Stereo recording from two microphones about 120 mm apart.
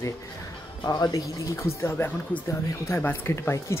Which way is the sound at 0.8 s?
30° left (ahead or behind).